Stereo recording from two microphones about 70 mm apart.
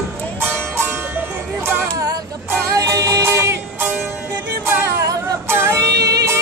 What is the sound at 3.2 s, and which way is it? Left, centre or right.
Music, right.